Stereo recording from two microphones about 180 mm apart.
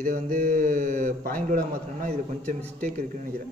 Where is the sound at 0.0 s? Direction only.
50° right (ahead or behind).